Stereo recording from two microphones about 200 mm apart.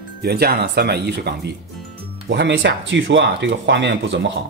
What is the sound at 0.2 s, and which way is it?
Speech, 50° right (ahead or behind).